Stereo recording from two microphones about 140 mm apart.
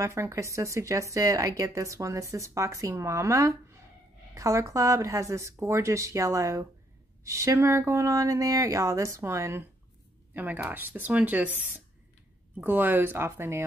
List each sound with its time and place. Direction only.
0.0 s speech: 20° right (ahead or behind)